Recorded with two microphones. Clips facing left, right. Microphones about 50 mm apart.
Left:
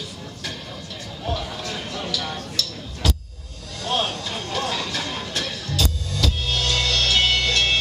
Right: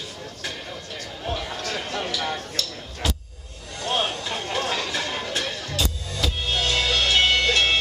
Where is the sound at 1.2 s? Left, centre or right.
Centre.